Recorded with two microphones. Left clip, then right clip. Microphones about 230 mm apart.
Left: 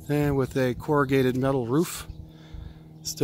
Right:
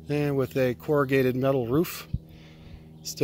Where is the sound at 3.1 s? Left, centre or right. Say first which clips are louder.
Left 2 dB; centre.